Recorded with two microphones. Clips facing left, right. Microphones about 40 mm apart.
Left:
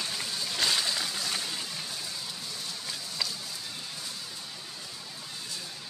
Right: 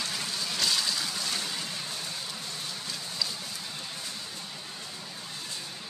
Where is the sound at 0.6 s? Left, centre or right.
Centre.